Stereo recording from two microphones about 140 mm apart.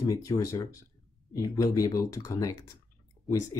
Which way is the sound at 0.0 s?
25° left (ahead or behind).